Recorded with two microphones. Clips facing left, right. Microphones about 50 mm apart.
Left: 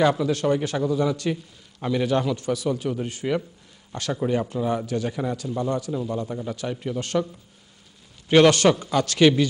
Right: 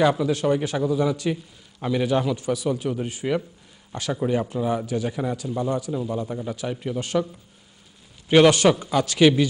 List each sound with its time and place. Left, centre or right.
0.0 s a man's voice: centre
8.3 s a man's voice: centre